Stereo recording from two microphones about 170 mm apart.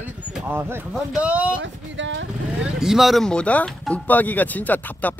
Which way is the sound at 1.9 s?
90° right.